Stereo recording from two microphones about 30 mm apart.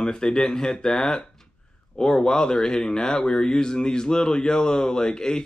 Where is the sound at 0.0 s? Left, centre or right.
Left.